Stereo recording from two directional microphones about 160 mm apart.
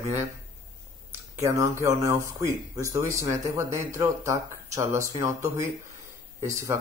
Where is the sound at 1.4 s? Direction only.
20° right (ahead or behind).